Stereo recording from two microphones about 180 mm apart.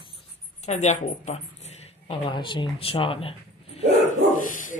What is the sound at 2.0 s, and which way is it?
Speech, 30° left (ahead or behind).